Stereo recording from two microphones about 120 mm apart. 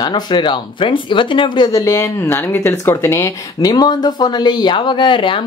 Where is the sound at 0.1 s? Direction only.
40° left (ahead or behind).